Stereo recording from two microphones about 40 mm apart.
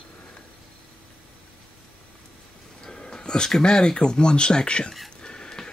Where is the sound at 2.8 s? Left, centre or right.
Centre.